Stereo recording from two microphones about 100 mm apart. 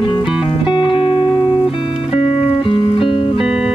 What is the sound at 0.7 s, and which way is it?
Music, 55° left (ahead or behind).